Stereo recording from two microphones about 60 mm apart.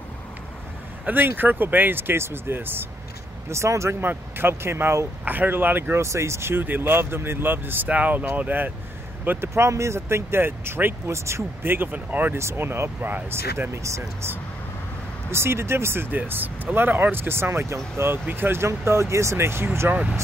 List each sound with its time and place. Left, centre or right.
1.0 s speech: right
3.4 s speech: right
4.0 s speech: right
5.2 s speech: right
5.9 s speech: right
6.6 s speech: right
9.5 s speech: right
11.1 s speech: right
11.6 s speech: right
12.4 s speech: right
15.3 s speech: right
18.7 s speech: right
19.9 s speech: centre